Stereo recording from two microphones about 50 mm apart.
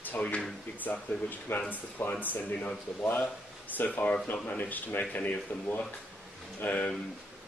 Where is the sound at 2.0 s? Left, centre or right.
Left.